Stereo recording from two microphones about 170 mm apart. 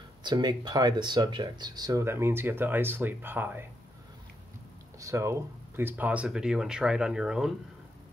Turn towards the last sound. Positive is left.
turn(degrees=-5)  # may be behind; listen again after turning